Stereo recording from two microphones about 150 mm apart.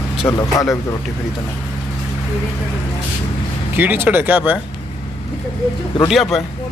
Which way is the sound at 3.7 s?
15° right (ahead or behind).